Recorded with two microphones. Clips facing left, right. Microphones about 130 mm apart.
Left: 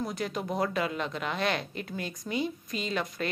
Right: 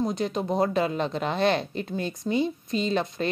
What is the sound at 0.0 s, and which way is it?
A woman's voice, 25° right (ahead or behind).